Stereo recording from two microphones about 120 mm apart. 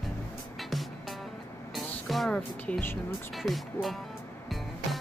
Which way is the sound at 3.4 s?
Centre (ahead or behind).